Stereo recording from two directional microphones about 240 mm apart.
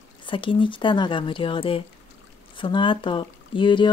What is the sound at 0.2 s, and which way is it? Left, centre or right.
Speech, left.